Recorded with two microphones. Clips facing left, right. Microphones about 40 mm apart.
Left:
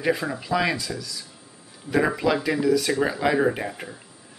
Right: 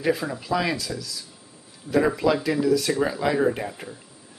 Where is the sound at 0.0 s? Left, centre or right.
Centre.